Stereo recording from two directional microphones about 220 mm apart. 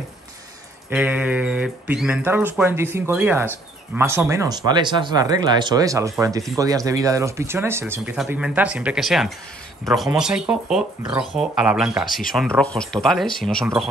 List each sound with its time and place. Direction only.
0.8 s speech: 5° right (ahead or behind)